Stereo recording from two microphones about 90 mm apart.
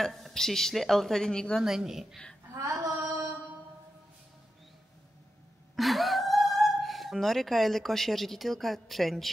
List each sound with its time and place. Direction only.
0.0 s a woman's voice: 5° left (ahead or behind)
1.6 s a woman's voice: 5° right (ahead or behind)
2.5 s female singing: 35° right (ahead or behind)
5.8 s speech: centre (ahead or behind)